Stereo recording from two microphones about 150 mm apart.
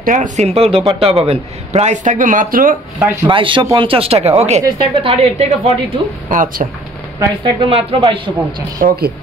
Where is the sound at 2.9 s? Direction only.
20° right (ahead or behind).